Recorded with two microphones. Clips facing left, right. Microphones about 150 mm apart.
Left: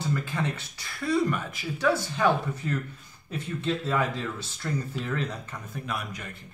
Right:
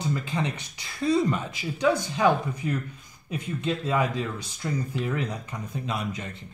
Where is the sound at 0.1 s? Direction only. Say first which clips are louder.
Left 1 dB; 15° right (ahead or behind).